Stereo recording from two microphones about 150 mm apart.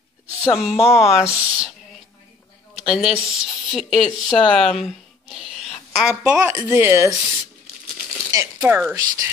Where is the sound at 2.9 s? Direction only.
5° right (ahead or behind).